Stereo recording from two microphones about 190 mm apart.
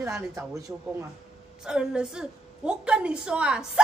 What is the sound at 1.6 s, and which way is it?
A woman's voice, 5° right (ahead or behind).